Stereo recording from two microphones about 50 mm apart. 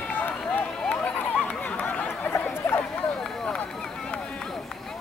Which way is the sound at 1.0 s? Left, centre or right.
Left.